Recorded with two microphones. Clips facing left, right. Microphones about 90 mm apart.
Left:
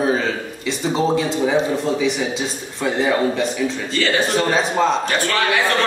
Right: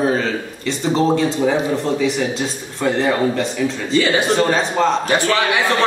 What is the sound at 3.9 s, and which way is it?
Speech, 10° right (ahead or behind).